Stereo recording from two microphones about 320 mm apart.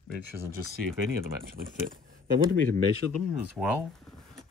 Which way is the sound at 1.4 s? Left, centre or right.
Right.